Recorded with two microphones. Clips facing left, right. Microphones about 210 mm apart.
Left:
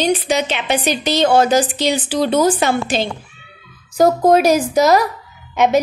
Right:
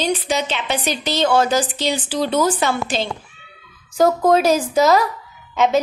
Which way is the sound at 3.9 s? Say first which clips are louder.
Left 3 dB; 35° left (ahead or behind).